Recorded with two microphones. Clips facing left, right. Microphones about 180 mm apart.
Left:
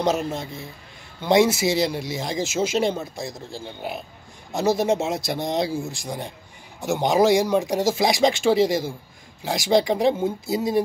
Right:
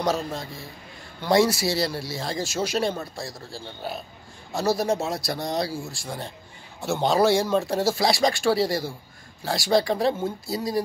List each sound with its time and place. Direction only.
0.0 s speech: 20° left (ahead or behind)